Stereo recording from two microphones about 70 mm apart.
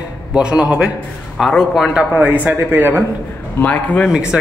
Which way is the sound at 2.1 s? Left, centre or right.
Right.